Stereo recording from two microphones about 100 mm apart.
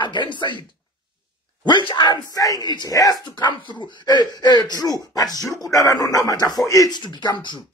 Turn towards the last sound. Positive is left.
turn(degrees=50)  # may be behind; listen again after turning